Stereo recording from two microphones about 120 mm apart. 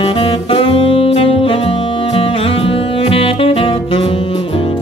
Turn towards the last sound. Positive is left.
turn(degrees=50)  # may be behind; listen again after turning